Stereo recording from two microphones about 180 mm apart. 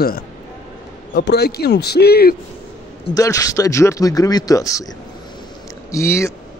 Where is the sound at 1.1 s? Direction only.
65° left (ahead or behind).